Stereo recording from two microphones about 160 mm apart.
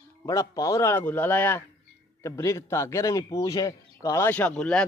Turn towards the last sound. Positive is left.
turn(degrees=5)  # may be behind; listen again after turning